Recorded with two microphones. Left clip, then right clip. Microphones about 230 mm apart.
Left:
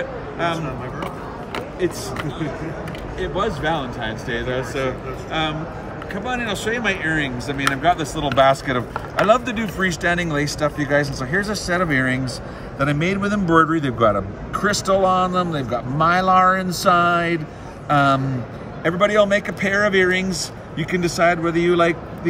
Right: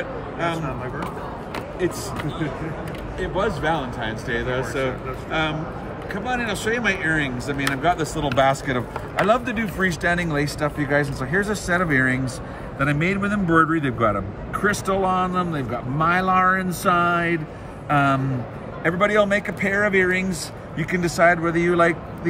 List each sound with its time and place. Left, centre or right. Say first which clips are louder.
1.5 s a sound: left 2 dB; centre
3.2 s a man's voice: left 1 dB; centre
20.7 s speech: left 1 dB; centre